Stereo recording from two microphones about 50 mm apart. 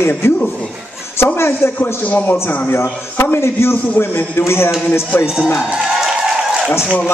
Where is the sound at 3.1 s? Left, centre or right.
Left.